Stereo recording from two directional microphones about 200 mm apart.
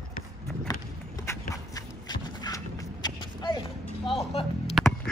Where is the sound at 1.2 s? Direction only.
15° left (ahead or behind).